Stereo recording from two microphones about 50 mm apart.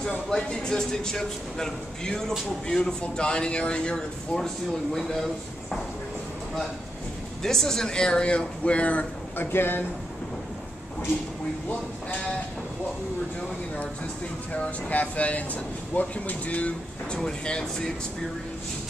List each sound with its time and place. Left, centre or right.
0.3 s a man's voice: centre
7.4 s speech: centre; by 9.0 s left
9.4 s speech: left
14.5 s speech: left
17.2 s a man's voice: centre